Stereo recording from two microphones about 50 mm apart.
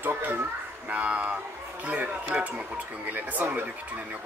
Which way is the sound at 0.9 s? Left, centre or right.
Right.